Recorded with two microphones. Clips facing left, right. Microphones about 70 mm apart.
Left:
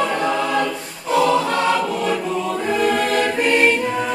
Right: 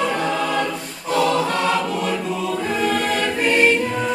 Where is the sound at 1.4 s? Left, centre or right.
Centre.